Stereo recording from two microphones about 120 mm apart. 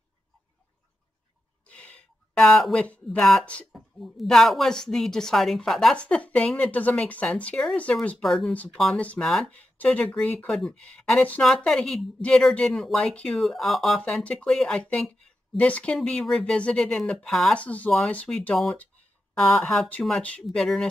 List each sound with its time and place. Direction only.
1.7 s speech: 10° left (ahead or behind)